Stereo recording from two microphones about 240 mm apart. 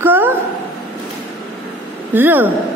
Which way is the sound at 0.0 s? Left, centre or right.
Centre.